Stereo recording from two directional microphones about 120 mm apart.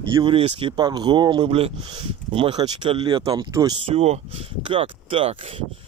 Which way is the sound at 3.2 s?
35° right (ahead or behind).